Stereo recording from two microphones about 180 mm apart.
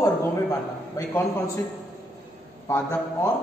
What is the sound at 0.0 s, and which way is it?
A man's voice, 15° left (ahead or behind).